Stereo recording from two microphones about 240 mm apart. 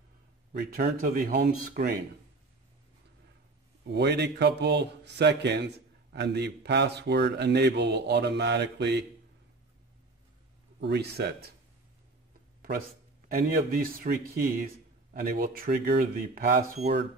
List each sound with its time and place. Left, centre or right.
0.5 s speech: right
3.8 s speech: right
10.8 s speech: right
13.3 s speech: right